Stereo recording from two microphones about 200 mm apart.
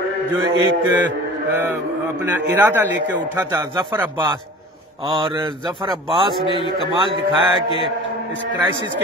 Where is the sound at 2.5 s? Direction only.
10° right (ahead or behind).